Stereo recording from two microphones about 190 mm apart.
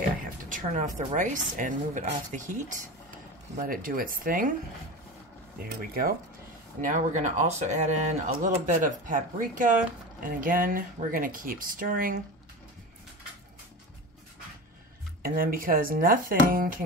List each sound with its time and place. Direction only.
0.4 s speech: 45° right (ahead or behind)
5.6 s speech: 50° right (ahead or behind)
15.2 s speech: 50° right (ahead or behind)